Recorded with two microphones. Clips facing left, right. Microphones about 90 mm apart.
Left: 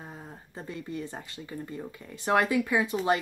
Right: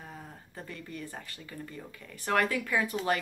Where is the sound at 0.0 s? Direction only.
20° left (ahead or behind).